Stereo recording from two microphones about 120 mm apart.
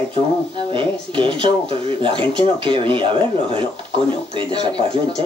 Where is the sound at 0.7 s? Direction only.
45° right (ahead or behind).